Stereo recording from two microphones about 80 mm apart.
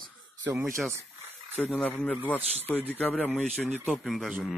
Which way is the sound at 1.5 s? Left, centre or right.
Centre.